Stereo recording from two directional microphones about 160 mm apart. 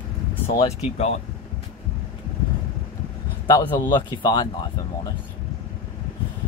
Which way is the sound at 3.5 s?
30° left (ahead or behind).